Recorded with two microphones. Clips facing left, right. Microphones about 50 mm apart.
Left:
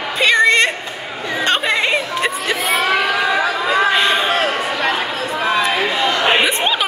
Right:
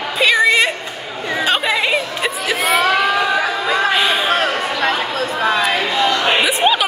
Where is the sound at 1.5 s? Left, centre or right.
Centre.